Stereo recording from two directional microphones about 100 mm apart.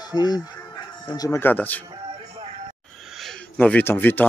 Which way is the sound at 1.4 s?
20° left (ahead or behind).